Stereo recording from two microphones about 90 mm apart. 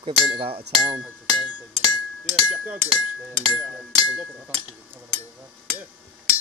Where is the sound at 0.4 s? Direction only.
90° right.